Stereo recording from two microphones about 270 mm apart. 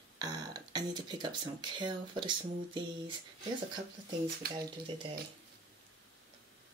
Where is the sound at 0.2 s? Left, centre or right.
Centre.